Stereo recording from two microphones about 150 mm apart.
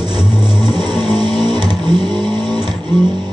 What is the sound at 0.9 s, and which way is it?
Vehicle, 30° right (ahead or behind).